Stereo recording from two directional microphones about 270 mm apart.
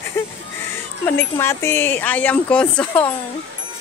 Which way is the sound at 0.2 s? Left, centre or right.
Centre.